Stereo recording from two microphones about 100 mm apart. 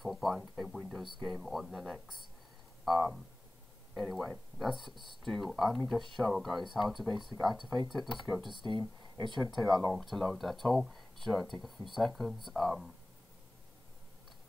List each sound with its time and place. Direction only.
0.0 s speech: centre (ahead or behind)
2.8 s a sound: centre (ahead or behind)
3.9 s speech: centre (ahead or behind)
8.5 s speech: 50° right (ahead or behind)
9.4 s speech: centre (ahead or behind)